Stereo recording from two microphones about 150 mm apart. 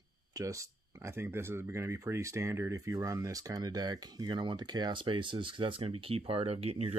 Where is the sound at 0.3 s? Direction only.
20° right (ahead or behind).